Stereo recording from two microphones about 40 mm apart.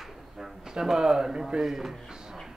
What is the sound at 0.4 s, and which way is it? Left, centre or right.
Speech, centre.